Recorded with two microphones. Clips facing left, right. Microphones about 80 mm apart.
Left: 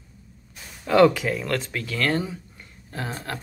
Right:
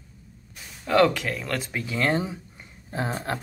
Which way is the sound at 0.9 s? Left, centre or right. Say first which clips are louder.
Left 3 dB; centre.